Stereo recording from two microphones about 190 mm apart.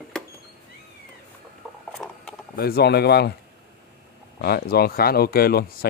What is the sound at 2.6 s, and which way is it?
Speech, 55° left (ahead or behind).